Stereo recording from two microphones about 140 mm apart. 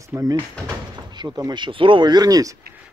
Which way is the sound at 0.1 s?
25° right (ahead or behind).